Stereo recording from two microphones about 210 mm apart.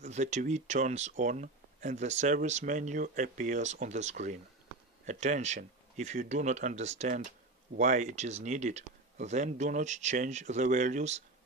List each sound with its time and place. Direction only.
0.0 s speech: 35° right (ahead or behind)